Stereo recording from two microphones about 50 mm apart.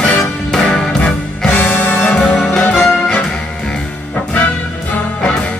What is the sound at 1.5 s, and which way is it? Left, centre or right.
Music, left.